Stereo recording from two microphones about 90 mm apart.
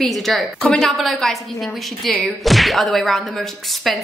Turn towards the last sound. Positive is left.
turn(degrees=0)  # may be behind; listen again after turning